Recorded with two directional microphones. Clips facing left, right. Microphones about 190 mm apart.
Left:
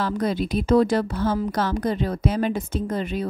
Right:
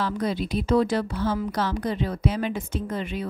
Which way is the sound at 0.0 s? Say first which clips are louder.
Left 3 dB; 45° left (ahead or behind).